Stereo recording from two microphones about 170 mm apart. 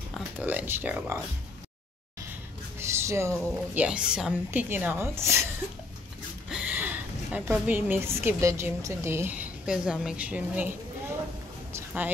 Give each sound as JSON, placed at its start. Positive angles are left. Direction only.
{"t": 0.4, "sound": "a woman's voice", "side_deg": -10}
{"t": 2.8, "sound": "music", "side_deg": -15}
{"t": 3.7, "sound": "a woman's voice", "side_deg": -5}
{"t": 6.5, "sound": "a woman's voice", "side_deg": -10}
{"t": 11.7, "sound": "a sound", "side_deg": -10}